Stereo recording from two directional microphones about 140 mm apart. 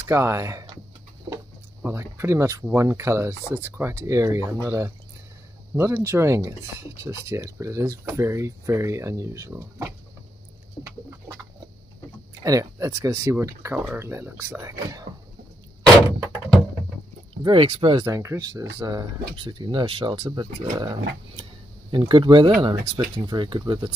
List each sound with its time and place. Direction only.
0.0 s speech: 20° right (ahead or behind)
1.3 s a sound: 30° right (ahead or behind)
1.9 s speech: 20° right (ahead or behind)
12.4 s speech: 20° right (ahead or behind)
17.4 s speech: 35° right (ahead or behind)
18.0 s speech: 20° right (ahead or behind)